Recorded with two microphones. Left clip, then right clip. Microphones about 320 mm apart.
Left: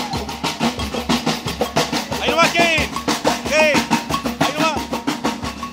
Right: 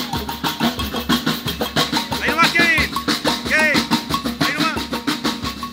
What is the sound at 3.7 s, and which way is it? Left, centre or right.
Music, left.